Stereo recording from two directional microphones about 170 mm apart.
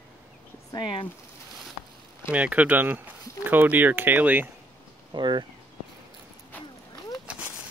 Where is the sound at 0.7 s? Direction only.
30° left (ahead or behind).